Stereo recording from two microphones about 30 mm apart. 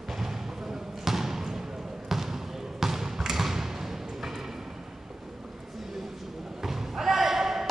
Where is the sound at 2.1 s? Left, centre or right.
Centre.